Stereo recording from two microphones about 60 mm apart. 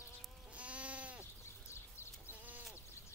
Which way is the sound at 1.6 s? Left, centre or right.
Left.